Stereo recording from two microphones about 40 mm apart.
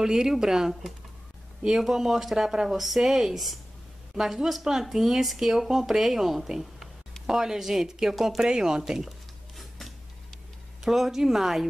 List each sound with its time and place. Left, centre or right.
0.0 s speech: centre
4.1 s a woman's voice: right
4.6 s speech: centre
9.6 s a sound: centre
10.8 s speech: centre